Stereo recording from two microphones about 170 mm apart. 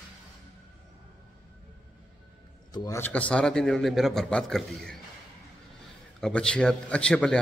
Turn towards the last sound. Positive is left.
turn(degrees=5)  # may be behind; listen again after turning